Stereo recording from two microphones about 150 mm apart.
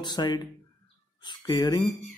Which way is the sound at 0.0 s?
30° left (ahead or behind).